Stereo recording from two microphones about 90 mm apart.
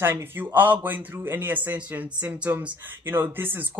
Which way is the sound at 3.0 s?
25° right (ahead or behind).